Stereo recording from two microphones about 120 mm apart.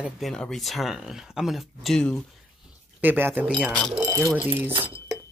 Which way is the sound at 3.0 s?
15° right (ahead or behind).